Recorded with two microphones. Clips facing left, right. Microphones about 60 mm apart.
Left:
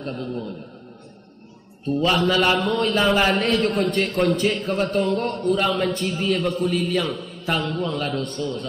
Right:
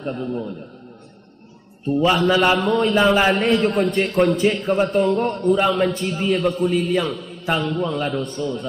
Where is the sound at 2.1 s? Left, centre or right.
Centre.